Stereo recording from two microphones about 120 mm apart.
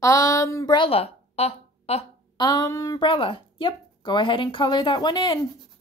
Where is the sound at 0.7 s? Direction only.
50° left (ahead or behind).